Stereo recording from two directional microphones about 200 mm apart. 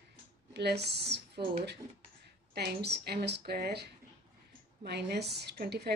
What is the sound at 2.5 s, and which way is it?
A woman's voice, 55° right (ahead or behind).